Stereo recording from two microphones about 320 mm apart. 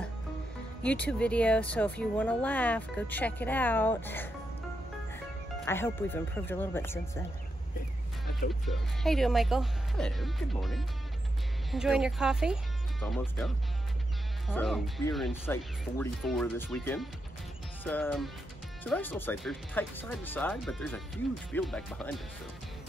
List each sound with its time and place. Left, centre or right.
0.8 s speech: centre
5.7 s speech: centre
8.6 s speech: centre
14.5 s speech: centre